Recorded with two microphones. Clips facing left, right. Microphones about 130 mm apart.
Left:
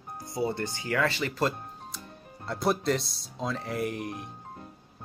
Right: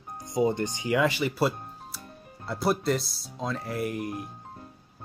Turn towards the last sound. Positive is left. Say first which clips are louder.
# right 1 dB
turn(degrees=0)  # may be behind; listen again after turning